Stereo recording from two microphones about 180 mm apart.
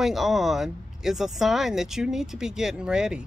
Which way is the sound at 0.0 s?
Centre (ahead or behind).